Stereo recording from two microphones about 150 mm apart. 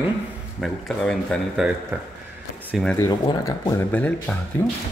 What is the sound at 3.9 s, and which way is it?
Speech, 10° left (ahead or behind).